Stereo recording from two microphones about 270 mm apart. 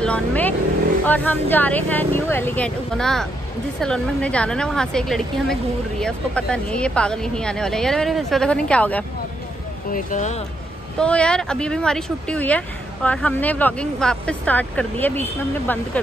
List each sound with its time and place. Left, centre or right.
0.0 s vehicle: centre
1.0 s a woman's voice: centre
9.9 s speech: left
11.0 s a woman's voice: centre